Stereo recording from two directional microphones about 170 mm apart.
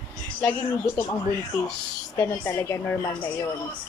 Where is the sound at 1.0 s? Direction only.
15° left (ahead or behind).